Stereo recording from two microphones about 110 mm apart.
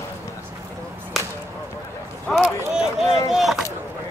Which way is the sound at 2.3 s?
5° right (ahead or behind).